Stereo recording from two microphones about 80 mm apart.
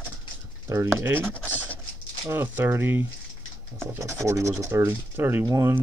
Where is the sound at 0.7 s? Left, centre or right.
Right.